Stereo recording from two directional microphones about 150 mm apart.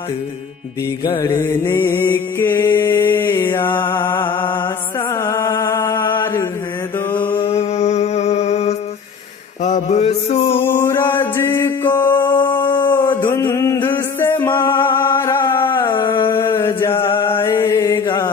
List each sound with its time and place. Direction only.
1.2 s mantra: 20° left (ahead or behind)
4.0 s music: 30° left (ahead or behind)
5.1 s music: 20° left (ahead or behind)
6.1 s mantra: 30° left (ahead or behind)
7.4 s music: 50° left (ahead or behind)
9.6 s mantra: 50° left (ahead or behind)
10.8 s mantra: 20° left (ahead or behind)
12.4 s dog: 30° left (ahead or behind)
12.9 s a sound: 15° left (ahead or behind)
14.6 s music: 15° left (ahead or behind)
15.5 s a sound: 15° left (ahead or behind)
16.3 s mantra: 15° left (ahead or behind)
17.0 s mantra: 35° left (ahead or behind)
17.5 s chant: 20° left (ahead or behind)